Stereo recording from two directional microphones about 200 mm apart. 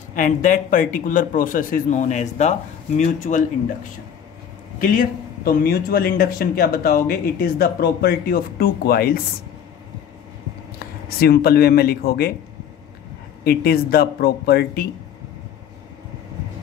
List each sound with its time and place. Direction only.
0.1 s speech: 40° left (ahead or behind)
4.7 s speech: 45° left (ahead or behind)
10.8 s speech: 50° left (ahead or behind)
13.4 s speech: 50° left (ahead or behind)